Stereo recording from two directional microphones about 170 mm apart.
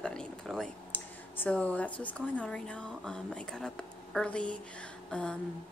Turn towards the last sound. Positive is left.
turn(degrees=5)  # may be behind; listen again after turning